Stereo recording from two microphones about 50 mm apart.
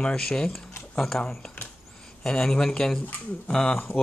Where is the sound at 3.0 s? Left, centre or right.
Left.